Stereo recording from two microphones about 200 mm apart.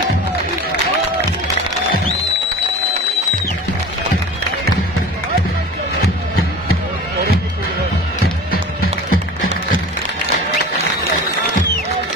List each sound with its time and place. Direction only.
8.5 s music: 50° left (ahead or behind)